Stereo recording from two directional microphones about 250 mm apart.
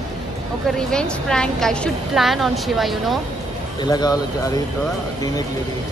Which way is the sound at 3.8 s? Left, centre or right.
Centre.